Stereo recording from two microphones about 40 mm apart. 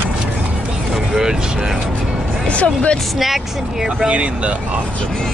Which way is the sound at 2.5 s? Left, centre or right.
Left.